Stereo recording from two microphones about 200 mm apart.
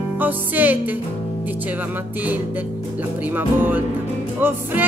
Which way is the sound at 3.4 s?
10° right (ahead or behind).